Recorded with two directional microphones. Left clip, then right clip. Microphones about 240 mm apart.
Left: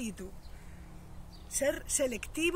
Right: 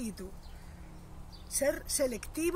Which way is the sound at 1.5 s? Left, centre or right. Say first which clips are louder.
Even; centre.